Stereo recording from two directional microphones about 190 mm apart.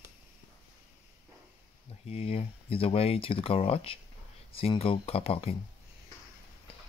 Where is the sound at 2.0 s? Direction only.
30° left (ahead or behind).